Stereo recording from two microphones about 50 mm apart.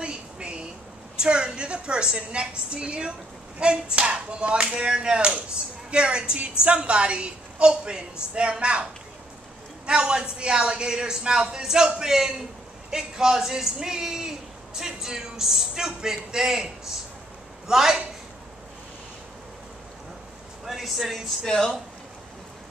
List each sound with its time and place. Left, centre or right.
0.0 s a sound: centre
1.1 s a woman's voice: centre
9.8 s a man's voice: centre
20.6 s speech: centre
21.5 s speech: centre